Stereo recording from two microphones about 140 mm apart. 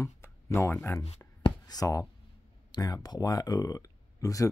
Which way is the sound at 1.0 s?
45° left (ahead or behind).